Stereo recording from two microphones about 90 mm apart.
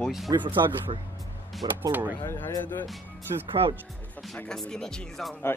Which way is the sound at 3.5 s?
70° right (ahead or behind).